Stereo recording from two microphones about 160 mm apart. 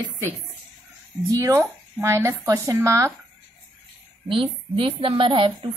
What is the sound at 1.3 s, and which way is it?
Speech, 20° right (ahead or behind).